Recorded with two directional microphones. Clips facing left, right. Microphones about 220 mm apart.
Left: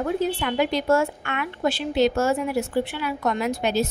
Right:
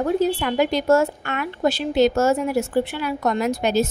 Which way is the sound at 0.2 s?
40° right (ahead or behind).